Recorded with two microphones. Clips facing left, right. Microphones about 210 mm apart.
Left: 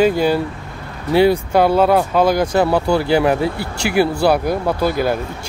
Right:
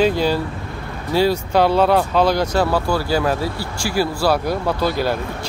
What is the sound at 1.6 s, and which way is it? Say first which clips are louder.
Speech: left 1 dB; 5° left (ahead or behind).